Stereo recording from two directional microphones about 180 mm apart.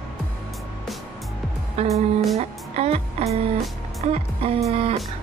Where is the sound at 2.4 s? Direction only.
35° right (ahead or behind).